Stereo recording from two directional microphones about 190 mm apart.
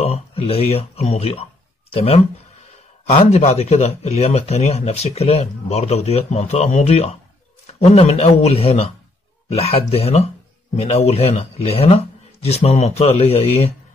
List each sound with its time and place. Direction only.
0.0 s speech: 30° left (ahead or behind)